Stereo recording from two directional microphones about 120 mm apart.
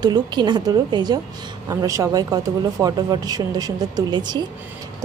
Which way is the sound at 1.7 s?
25° right (ahead or behind).